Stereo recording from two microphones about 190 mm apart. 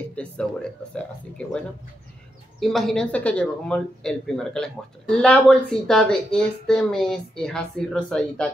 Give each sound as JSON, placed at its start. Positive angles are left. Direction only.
{"t": 0.1, "sound": "speech", "side_deg": 5}
{"t": 2.6, "sound": "speech", "side_deg": 0}